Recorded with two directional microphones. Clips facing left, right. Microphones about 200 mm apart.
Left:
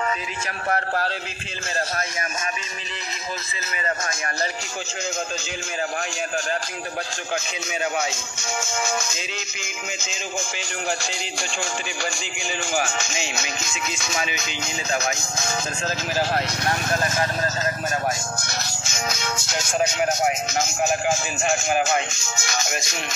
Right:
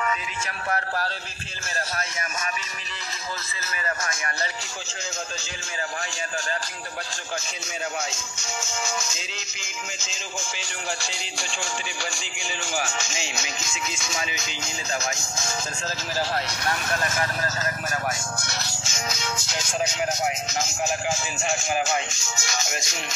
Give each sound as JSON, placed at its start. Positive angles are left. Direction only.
{"t": 0.7, "sound": "speech", "side_deg": 45}
{"t": 8.0, "sound": "speech", "side_deg": 55}
{"t": 12.7, "sound": "music", "side_deg": 55}
{"t": 16.9, "sound": "speech", "side_deg": 30}
{"t": 18.5, "sound": "speech", "side_deg": 45}